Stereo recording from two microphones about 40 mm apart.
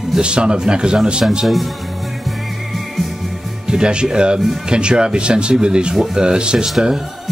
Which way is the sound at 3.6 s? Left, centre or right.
Right.